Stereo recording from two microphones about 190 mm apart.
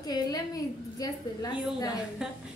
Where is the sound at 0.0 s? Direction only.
20° left (ahead or behind).